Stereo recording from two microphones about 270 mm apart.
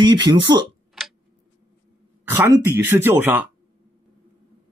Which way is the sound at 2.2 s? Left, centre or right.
Centre.